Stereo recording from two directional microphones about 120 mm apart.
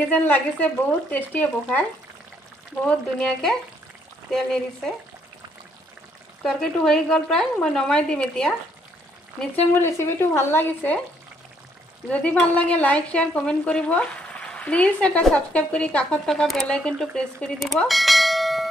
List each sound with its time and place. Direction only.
0.1 s speech: 15° left (ahead or behind)
6.4 s speech: 5° left (ahead or behind)
9.4 s speech: 15° left (ahead or behind)
12.1 s speech: 10° left (ahead or behind)